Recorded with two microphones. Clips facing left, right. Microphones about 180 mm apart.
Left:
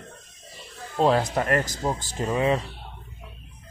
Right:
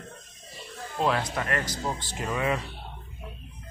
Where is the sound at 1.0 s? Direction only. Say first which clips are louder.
Left 6 dB; 35° left (ahead or behind).